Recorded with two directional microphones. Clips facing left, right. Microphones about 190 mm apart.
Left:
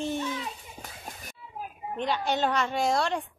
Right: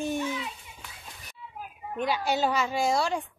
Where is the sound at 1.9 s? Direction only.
5° right (ahead or behind).